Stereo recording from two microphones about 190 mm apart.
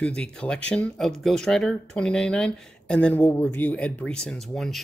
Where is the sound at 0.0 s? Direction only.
5° left (ahead or behind).